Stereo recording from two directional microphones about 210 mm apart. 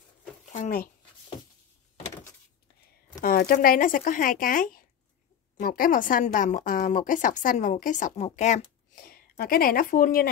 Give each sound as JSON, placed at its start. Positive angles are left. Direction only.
{"t": 0.5, "sound": "speech", "side_deg": 35}
{"t": 3.2, "sound": "a woman's voice", "side_deg": 45}